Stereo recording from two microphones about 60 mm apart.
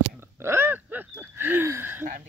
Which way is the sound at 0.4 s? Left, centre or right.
Right.